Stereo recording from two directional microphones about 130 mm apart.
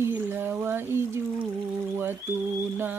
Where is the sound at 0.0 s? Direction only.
15° right (ahead or behind).